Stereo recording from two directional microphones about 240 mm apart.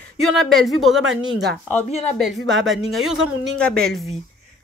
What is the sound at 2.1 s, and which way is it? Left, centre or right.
Speech, centre.